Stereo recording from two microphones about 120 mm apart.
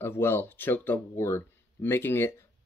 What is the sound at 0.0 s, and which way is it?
Speech, 20° left (ahead or behind).